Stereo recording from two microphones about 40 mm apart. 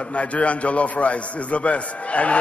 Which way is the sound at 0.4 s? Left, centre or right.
Left.